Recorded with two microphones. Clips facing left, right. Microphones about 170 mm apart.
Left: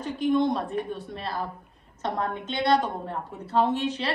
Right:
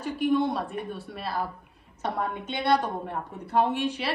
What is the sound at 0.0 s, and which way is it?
A woman's voice, 10° right (ahead or behind).